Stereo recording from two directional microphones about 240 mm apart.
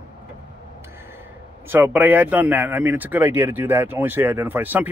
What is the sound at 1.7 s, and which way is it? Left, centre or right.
Speech, centre.